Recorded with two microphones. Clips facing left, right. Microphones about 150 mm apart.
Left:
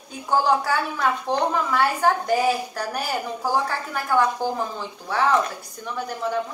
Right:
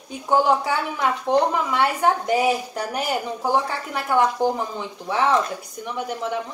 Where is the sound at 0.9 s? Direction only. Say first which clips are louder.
Right 3 dB; 15° right (ahead or behind).